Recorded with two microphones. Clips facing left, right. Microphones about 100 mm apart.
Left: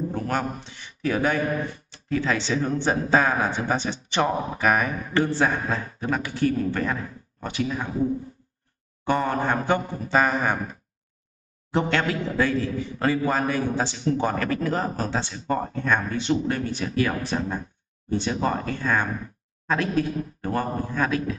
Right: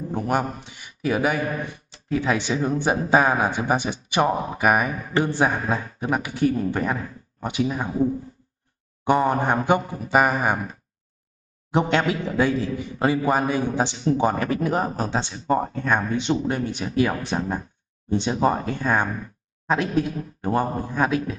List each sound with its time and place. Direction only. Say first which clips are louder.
0.1 s a man's voice: right 3 dB; 15° right (ahead or behind)
9.0 s a man's voice: right 3 dB; 15° right (ahead or behind)
11.7 s a man's voice: right 2 dB; 15° right (ahead or behind)